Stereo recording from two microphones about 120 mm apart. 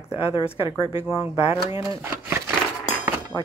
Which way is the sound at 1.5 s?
25° right (ahead or behind).